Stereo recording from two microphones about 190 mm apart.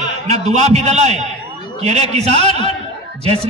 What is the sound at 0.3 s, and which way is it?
A man's voice, 35° right (ahead or behind).